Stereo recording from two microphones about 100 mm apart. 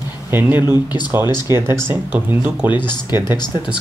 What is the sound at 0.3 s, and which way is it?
Speech, 20° right (ahead or behind).